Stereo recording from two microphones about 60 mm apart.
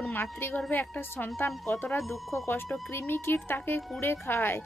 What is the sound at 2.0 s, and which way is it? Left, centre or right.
Speech, centre.